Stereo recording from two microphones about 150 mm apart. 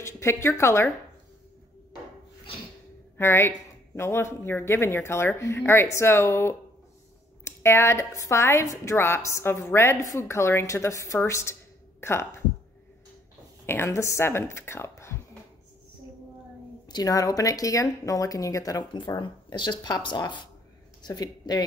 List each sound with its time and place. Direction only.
0.0 s a woman's voice: 20° left (ahead or behind)
3.2 s a woman's voice: 15° left (ahead or behind)
13.7 s a woman's voice: 15° left (ahead or behind)
16.9 s speech: 25° left (ahead or behind)